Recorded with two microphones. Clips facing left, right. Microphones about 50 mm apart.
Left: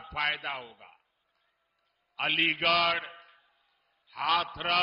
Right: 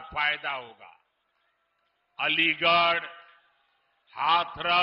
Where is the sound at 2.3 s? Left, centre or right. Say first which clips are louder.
Right 3 dB; centre.